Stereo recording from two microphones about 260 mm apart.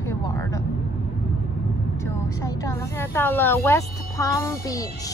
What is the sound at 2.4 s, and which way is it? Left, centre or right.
Speech, centre.